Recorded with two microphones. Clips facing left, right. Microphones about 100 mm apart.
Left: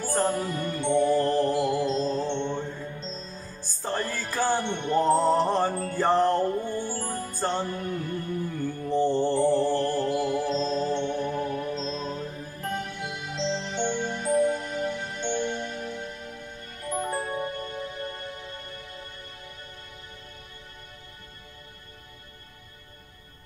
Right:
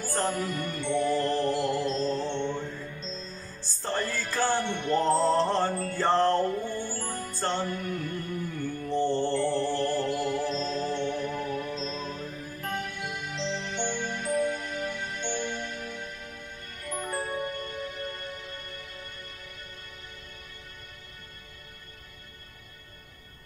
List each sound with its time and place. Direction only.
0.1 s music: 20° left (ahead or behind)
1.3 s music: 15° left (ahead or behind)
2.2 s music: 30° left (ahead or behind)
3.5 s music: 15° left (ahead or behind)
6.9 s music: 25° left (ahead or behind)
8.8 s mantra: 15° left (ahead or behind)
9.7 s music: 15° left (ahead or behind)